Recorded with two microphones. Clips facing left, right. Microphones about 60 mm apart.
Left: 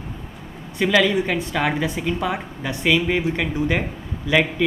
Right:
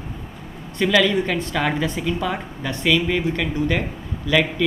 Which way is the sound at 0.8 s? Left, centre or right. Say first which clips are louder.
Even; centre.